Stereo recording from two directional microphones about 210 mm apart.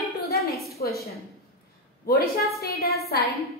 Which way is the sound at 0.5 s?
Centre (ahead or behind).